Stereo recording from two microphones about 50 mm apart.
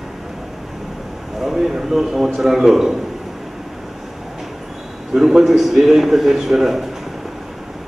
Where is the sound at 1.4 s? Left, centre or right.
Centre.